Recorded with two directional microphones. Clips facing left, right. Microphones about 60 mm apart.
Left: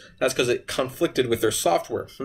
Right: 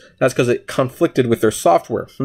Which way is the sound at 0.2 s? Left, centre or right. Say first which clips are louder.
Right 7 dB; right.